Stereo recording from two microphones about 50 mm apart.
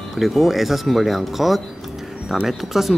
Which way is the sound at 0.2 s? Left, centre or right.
Centre.